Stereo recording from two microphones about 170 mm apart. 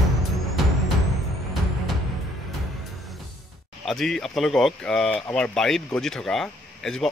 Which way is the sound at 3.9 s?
Centre (ahead or behind).